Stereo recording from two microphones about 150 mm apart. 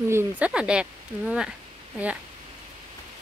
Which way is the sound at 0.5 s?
5° right (ahead or behind).